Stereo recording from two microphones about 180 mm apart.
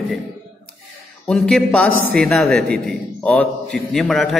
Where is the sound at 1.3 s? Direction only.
Centre (ahead or behind).